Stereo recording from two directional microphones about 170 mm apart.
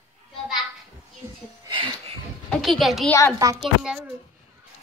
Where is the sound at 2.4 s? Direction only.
Centre (ahead or behind).